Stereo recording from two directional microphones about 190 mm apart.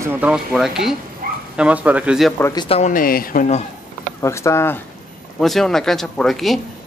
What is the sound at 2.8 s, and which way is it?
Speech, 45° left (ahead or behind).